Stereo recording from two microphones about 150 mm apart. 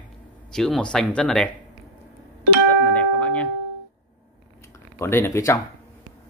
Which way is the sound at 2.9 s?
10° left (ahead or behind).